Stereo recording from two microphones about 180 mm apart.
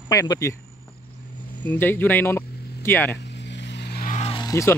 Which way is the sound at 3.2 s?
75° left (ahead or behind).